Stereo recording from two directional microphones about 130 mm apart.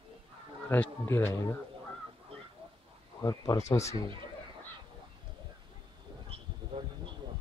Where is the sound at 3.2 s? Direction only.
30° left (ahead or behind).